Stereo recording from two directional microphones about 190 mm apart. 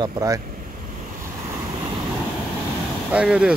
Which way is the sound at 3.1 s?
5° right (ahead or behind).